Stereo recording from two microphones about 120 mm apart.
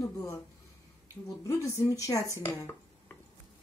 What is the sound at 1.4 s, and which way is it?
Speech, 25° left (ahead or behind).